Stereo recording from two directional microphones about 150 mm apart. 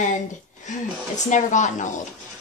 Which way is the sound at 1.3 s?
55° left (ahead or behind).